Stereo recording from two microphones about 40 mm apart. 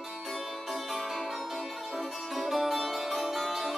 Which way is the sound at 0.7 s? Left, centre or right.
Centre.